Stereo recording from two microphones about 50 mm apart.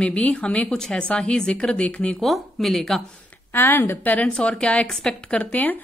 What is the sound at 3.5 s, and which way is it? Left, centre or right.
Speech, left.